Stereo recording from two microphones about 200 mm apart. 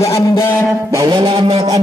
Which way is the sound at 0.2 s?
15° left (ahead or behind).